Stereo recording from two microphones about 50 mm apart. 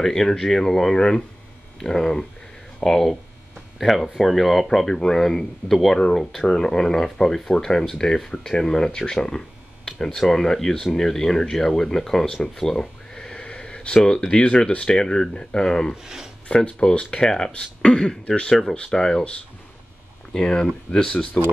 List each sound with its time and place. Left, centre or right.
0.0 s speech: centre
15.9 s speech: centre
16.4 s speech: centre
20.3 s speech: centre